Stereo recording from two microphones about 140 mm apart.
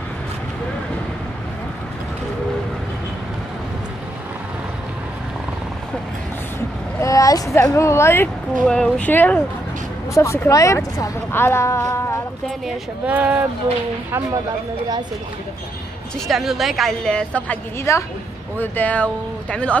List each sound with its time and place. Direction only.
7.0 s a sound: 25° left (ahead or behind)
8.6 s a woman's voice: 5° left (ahead or behind)
12.4 s speech: 5° right (ahead or behind)
16.3 s a woman's voice: centre (ahead or behind)
17.9 s a woman's voice: 20° left (ahead or behind)